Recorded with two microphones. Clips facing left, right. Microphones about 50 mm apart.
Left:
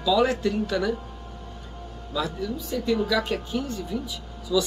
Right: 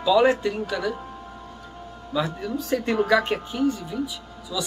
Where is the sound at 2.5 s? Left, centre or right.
Right.